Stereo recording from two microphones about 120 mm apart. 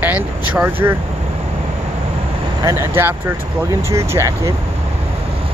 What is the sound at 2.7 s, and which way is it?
Speech, 20° right (ahead or behind).